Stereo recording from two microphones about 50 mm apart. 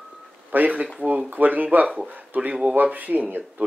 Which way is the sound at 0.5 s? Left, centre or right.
Right.